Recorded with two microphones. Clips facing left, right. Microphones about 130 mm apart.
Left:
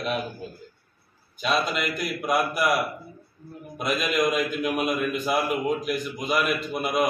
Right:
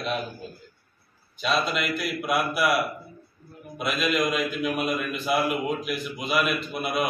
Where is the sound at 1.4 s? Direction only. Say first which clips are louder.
Even; centre (ahead or behind).